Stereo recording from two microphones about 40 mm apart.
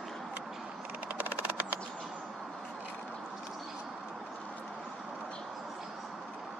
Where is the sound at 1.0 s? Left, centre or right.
Right.